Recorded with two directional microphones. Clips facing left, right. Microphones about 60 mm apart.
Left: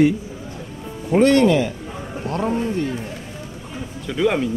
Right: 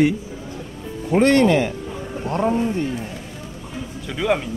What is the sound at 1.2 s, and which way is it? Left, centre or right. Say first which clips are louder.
Speech: left 1 dB; right.